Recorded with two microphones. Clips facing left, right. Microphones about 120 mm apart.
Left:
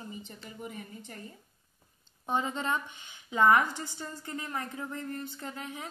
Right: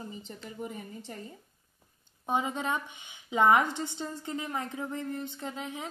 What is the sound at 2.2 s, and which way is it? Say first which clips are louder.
Speech: right 1 dB; 15° right (ahead or behind).